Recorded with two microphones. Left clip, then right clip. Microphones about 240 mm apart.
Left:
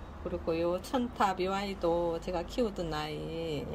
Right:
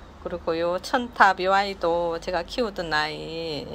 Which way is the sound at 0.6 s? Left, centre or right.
Right.